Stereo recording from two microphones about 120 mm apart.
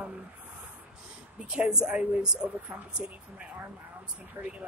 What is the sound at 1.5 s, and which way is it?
Speech, 5° right (ahead or behind).